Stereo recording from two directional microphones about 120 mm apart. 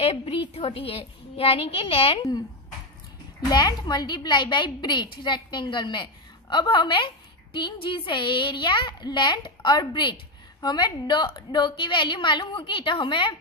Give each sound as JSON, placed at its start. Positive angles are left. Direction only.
{"t": 0.0, "sound": "a woman's voice", "side_deg": 50}
{"t": 3.4, "sound": "a woman's voice", "side_deg": 35}